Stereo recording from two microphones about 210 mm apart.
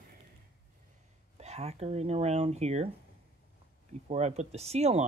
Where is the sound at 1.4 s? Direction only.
30° right (ahead or behind).